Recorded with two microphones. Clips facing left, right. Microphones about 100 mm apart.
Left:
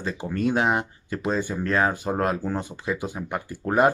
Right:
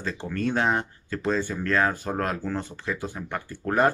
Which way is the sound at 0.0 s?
15° left (ahead or behind).